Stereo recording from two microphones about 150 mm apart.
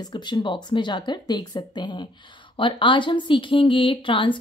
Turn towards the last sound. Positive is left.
turn(degrees=35)  # may be behind; listen again after turning